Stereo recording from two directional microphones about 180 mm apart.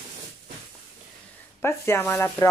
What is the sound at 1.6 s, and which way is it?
Speech, 15° left (ahead or behind).